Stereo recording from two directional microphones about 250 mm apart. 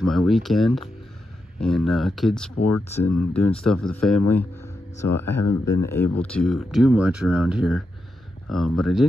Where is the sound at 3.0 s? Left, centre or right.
Centre.